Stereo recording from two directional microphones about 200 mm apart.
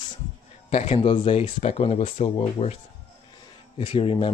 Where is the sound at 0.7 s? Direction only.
30° left (ahead or behind).